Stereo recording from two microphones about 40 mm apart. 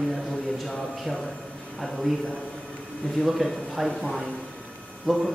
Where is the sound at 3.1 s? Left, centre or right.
Centre.